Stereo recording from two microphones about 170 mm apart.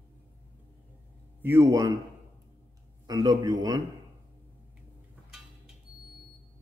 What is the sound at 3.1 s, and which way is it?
Speech, 20° right (ahead or behind).